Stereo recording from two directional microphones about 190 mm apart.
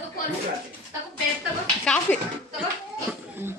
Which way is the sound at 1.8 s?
5° left (ahead or behind).